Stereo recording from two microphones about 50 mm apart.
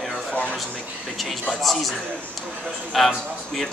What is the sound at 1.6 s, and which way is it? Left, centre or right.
Speech, centre.